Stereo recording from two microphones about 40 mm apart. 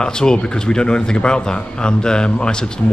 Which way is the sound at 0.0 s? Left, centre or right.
Centre.